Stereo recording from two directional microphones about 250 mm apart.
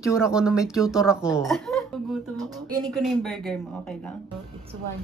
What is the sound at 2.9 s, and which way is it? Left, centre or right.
Speech, centre.